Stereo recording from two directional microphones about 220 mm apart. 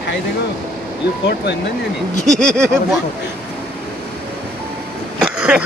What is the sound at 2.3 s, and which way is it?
Speech, 5° left (ahead or behind).